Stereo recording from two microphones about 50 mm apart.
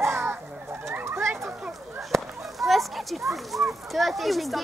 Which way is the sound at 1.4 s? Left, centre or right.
Right.